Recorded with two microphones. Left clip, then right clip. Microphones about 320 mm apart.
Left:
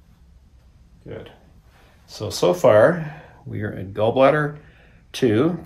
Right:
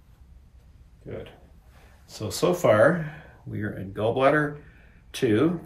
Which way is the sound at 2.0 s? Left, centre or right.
Centre.